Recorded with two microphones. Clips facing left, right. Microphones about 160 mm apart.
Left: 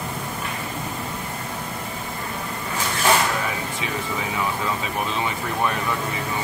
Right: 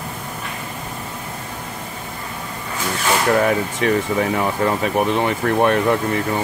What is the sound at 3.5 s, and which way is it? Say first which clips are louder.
Speech: right 10 dB; 55° right (ahead or behind).